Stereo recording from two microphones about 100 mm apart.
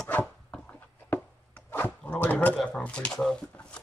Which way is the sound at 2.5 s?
10° left (ahead or behind).